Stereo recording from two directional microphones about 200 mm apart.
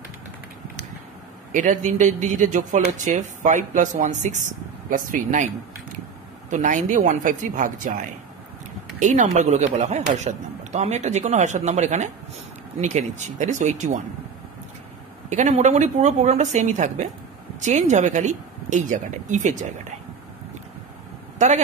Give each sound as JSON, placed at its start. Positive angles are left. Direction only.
{"t": 1.5, "sound": "speech", "side_deg": -40}
{"t": 6.5, "sound": "speech", "side_deg": -40}
{"t": 15.2, "sound": "speech", "side_deg": -35}
{"t": 21.4, "sound": "a man's voice", "side_deg": -35}